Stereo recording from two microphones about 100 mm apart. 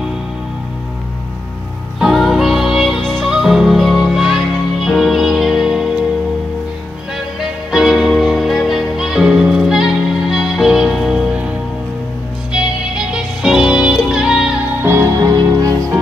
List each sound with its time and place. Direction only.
2.0 s music: centre (ahead or behind)
7.3 s music: 5° right (ahead or behind)
12.5 s music: 5° right (ahead or behind)
14.8 s music: 25° right (ahead or behind)
15.2 s music: 35° right (ahead or behind)